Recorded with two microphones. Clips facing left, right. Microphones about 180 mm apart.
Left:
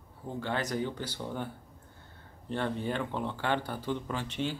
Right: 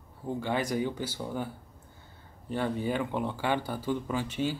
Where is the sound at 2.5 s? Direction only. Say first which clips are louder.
Right 2 dB; 5° right (ahead or behind).